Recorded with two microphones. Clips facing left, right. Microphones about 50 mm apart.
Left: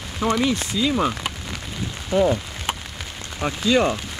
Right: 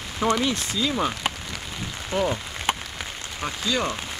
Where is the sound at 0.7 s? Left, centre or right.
Centre.